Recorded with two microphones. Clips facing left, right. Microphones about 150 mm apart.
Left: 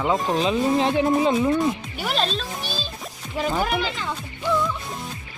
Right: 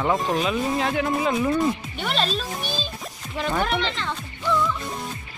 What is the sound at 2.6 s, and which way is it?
Music, 20° right (ahead or behind).